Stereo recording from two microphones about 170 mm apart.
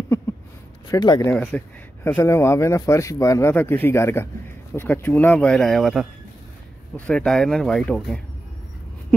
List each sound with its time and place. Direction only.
0.8 s speech: 25° left (ahead or behind)
1.3 s speech: 5° left (ahead or behind)
7.1 s speech: 5° left (ahead or behind)